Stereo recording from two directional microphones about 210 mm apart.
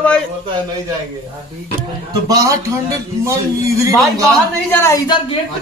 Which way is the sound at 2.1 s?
20° right (ahead or behind).